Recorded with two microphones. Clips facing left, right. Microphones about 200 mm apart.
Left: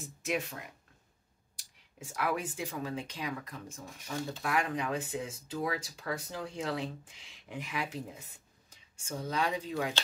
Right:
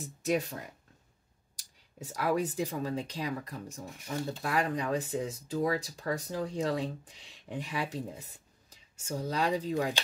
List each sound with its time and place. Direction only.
0.0 s speech: 35° right (ahead or behind)